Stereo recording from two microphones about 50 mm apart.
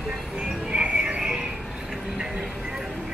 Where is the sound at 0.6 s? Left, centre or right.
Centre.